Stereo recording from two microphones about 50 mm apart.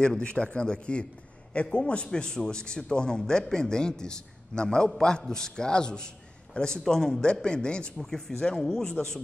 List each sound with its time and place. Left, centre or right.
0.0 s a man's voice: centre
8.1 s a man's voice: centre